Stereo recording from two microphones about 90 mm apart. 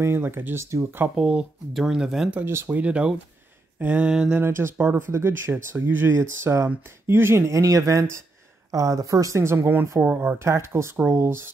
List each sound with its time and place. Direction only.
0.0 s speech: 25° right (ahead or behind)
1.1 s speech: 5° right (ahead or behind)
2.4 s speech: 25° right (ahead or behind)
4.4 s speech: 25° right (ahead or behind)